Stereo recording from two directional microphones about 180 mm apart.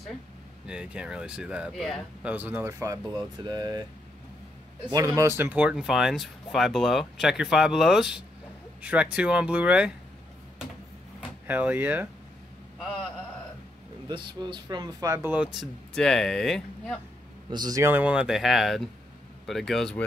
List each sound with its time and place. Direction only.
0.7 s speech: 5° right (ahead or behind); by 3.8 s 20° right (ahead or behind)
4.9 s speech: 15° right (ahead or behind)
11.1 s speech: 10° right (ahead or behind)
14.0 s speech: 25° right (ahead or behind); by 17.0 s 5° left (ahead or behind)
17.5 s speech: 20° right (ahead or behind); by 20.1 s 5° left (ahead or behind)